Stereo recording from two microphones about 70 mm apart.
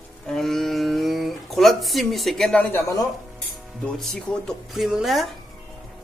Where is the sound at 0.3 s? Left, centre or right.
Centre.